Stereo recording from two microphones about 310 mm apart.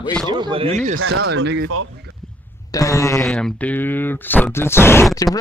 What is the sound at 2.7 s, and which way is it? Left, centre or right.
Speech, centre.